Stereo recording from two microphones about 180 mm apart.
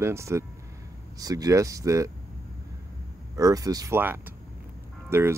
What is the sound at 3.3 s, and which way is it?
Speech, 20° right (ahead or behind).